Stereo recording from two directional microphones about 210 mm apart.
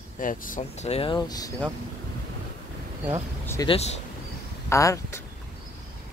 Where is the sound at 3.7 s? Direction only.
30° left (ahead or behind).